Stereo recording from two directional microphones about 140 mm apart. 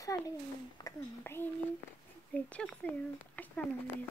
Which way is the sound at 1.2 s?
15° left (ahead or behind).